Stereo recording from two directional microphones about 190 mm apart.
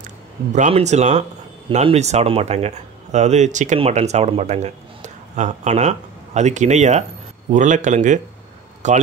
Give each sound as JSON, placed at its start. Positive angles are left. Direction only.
{"t": 0.0, "sound": "speech", "side_deg": -40}